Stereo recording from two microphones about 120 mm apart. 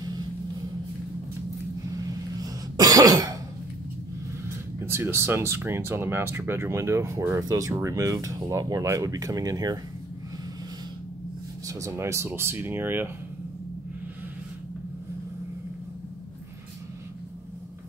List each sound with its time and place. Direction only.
1.9 s throat clearing: 30° right (ahead or behind)
4.7 s speech: 20° right (ahead or behind)
11.6 s speech: 25° right (ahead or behind)